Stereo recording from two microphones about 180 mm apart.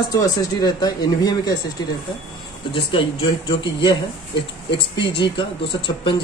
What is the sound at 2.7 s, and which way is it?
Speech, 30° left (ahead or behind).